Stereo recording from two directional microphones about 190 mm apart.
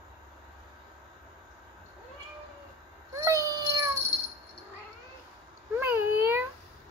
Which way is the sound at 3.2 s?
15° right (ahead or behind).